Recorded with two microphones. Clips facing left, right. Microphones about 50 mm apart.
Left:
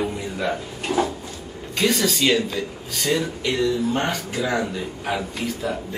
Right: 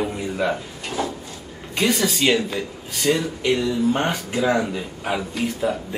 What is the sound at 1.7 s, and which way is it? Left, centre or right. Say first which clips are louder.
Speech: even; centre.